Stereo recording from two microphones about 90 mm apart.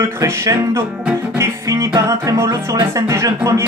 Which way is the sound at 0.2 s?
35° right (ahead or behind).